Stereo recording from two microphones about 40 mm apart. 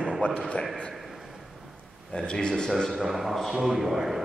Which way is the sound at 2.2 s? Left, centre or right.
Left.